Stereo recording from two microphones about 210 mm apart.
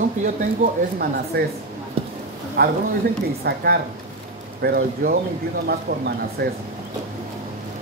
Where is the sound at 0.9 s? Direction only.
50° right (ahead or behind).